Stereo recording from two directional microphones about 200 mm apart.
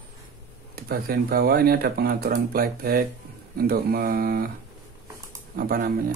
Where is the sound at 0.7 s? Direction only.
50° right (ahead or behind).